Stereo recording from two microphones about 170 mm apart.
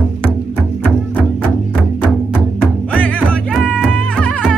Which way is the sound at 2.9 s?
10° left (ahead or behind).